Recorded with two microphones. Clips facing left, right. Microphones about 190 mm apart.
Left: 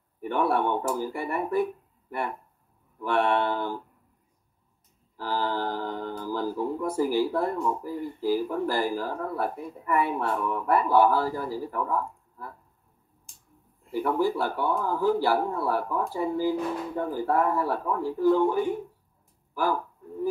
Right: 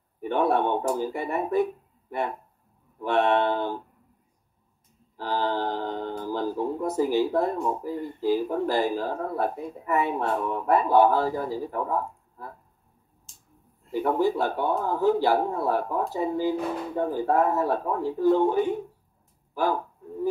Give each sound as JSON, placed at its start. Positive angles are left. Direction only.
{"t": 0.2, "sound": "speech", "side_deg": -20}
{"t": 5.1, "sound": "speech", "side_deg": -20}
{"t": 13.9, "sound": "speech", "side_deg": -20}